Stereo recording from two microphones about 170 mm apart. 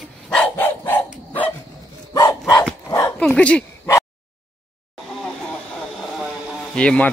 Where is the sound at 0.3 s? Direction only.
10° left (ahead or behind).